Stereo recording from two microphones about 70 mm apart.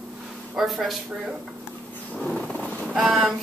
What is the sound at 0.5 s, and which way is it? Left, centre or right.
Speech, centre.